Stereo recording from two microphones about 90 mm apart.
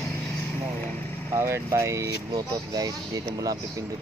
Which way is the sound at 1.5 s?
35° right (ahead or behind).